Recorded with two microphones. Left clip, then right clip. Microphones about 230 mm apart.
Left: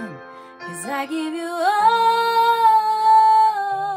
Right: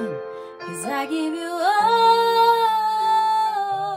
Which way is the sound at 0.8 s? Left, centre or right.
Centre.